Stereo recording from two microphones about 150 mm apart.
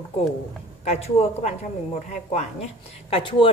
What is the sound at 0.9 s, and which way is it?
A woman's voice, 45° left (ahead or behind).